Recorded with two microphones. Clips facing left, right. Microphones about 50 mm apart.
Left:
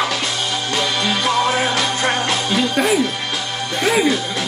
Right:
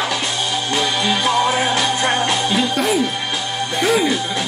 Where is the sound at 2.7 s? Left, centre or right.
Centre.